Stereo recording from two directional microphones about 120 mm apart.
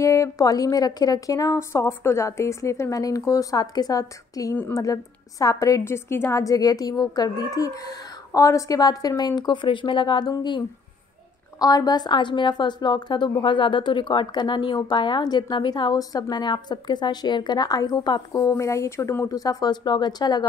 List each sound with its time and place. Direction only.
0.0 s a woman's voice: 25° left (ahead or behind)
11.6 s a woman's voice: 35° left (ahead or behind)